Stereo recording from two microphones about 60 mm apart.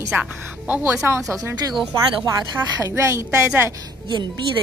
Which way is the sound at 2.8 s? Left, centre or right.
Right.